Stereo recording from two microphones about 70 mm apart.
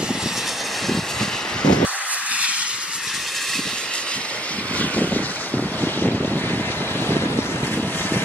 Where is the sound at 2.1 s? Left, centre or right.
Centre.